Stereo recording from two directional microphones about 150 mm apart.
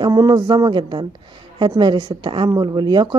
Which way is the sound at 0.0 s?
25° right (ahead or behind).